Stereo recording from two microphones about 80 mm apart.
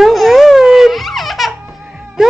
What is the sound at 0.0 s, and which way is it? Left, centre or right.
Baby laughter, centre.